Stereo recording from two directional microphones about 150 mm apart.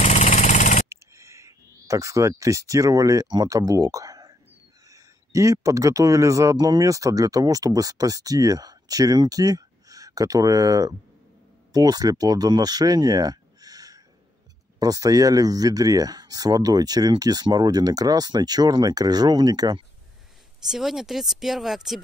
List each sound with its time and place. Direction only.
0.0 s a sound: 50° left (ahead or behind)
0.8 s speech: 20° right (ahead or behind)
20.6 s speech: centre (ahead or behind)